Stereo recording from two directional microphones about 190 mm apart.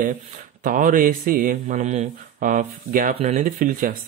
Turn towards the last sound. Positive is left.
turn(degrees=-45)  # may be behind; listen again after turning